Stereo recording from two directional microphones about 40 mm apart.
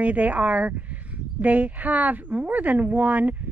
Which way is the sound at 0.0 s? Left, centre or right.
Right.